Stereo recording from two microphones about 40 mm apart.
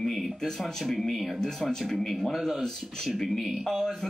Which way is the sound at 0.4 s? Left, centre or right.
Centre.